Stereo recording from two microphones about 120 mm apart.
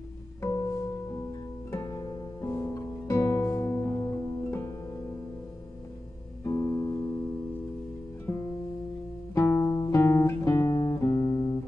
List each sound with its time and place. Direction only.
0.4 s music: 25° left (ahead or behind)
6.4 s music: 25° left (ahead or behind)
8.3 s music: 25° left (ahead or behind)
9.3 s guitar: 20° left (ahead or behind)
11.1 s music: 25° left (ahead or behind)